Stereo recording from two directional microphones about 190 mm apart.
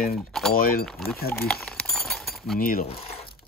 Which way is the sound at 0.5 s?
50° left (ahead or behind).